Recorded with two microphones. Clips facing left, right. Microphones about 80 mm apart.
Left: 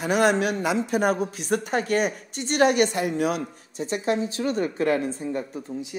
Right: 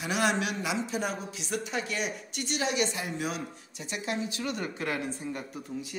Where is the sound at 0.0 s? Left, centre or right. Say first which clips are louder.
Left 7 dB; left.